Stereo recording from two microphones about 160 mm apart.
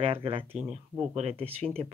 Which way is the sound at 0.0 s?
35° right (ahead or behind).